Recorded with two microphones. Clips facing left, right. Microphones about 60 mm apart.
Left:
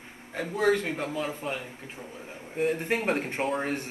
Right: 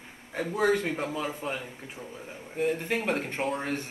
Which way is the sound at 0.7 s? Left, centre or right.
Left.